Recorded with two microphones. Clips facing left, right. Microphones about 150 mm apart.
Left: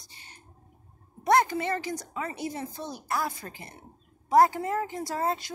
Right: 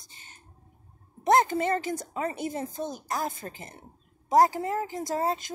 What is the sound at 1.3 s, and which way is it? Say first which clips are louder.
Speech: right 1 dB; 45° right (ahead or behind).